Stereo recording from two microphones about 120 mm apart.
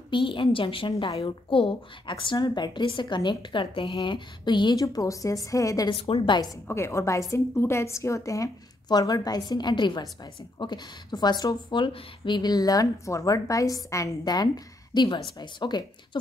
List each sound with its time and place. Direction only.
0.1 s a woman's voice: 45° left (ahead or behind)
4.8 s a woman's voice: 25° left (ahead or behind)
5.9 s a woman's voice: 50° left (ahead or behind)
6.7 s a woman's voice: 25° left (ahead or behind); by 16.2 s 40° left (ahead or behind)